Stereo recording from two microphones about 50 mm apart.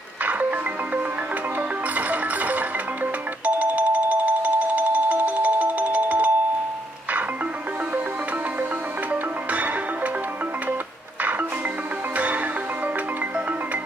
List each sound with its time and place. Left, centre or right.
0.2 s music: right
9.1 s music: right
12.2 s music: right